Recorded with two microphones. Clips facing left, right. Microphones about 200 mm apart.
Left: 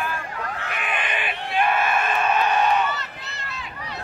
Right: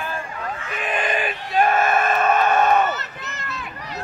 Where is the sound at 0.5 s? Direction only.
70° left (ahead or behind).